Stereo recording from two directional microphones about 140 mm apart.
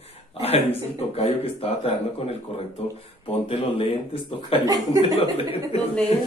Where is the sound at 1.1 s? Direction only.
45° left (ahead or behind).